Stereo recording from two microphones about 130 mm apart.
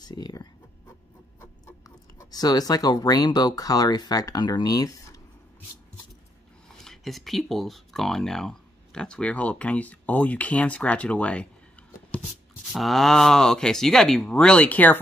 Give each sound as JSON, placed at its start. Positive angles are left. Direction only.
{"t": 0.0, "sound": "writing", "side_deg": 30}
{"t": 1.4, "sound": "speech", "side_deg": 20}
{"t": 6.8, "sound": "speech", "side_deg": 0}
{"t": 12.7, "sound": "speech", "side_deg": 0}